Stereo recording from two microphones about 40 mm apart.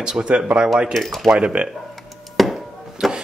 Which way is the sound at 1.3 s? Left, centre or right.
Right.